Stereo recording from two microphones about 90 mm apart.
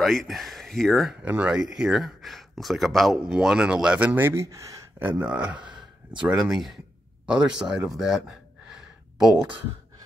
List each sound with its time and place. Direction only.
0.0 s speech: centre (ahead or behind)
1.2 s speech: 15° right (ahead or behind); by 4.7 s 35° right (ahead or behind)
4.9 s speech: 25° right (ahead or behind)
5.3 s speech: 15° right (ahead or behind)
7.2 s gasp: 10° right (ahead or behind)